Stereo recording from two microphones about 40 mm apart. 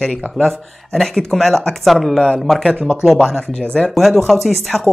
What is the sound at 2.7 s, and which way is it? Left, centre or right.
Speech, left.